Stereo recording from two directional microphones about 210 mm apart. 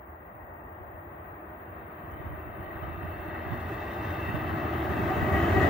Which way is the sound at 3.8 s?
5° right (ahead or behind).